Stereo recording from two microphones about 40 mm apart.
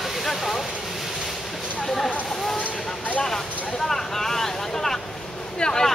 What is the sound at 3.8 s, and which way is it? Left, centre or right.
Vehicle, centre.